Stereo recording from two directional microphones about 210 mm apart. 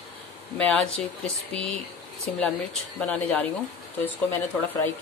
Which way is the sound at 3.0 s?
5° left (ahead or behind).